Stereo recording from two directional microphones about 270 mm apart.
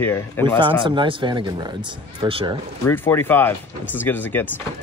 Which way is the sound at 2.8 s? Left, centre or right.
Centre.